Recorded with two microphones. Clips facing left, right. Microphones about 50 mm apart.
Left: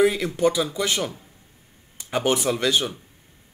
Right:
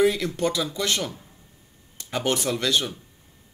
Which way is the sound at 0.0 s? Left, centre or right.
Centre.